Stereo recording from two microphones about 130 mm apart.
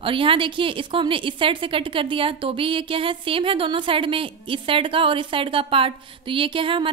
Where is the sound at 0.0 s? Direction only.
45° right (ahead or behind).